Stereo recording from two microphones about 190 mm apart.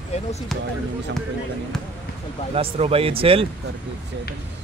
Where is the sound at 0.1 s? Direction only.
35° left (ahead or behind).